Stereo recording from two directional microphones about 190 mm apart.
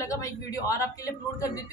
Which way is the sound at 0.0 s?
15° left (ahead or behind).